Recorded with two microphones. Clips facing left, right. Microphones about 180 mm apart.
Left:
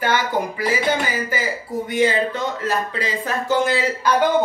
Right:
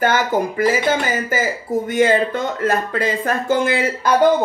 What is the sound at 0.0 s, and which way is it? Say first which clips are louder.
Speech: right 3 dB; 50° right (ahead or behind).